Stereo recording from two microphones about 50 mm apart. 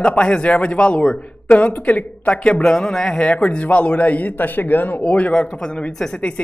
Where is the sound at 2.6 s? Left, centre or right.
Centre; by 5.0 s left.